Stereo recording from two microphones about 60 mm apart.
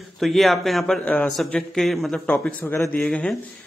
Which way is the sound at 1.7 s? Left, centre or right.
Centre.